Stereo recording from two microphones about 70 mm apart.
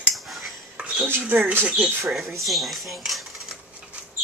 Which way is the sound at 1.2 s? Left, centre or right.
Right.